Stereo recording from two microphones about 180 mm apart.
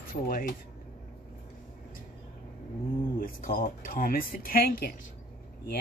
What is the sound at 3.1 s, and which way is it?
Speech, 50° left (ahead or behind).